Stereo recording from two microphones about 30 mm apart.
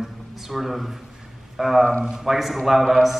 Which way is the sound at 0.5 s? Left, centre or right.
Centre.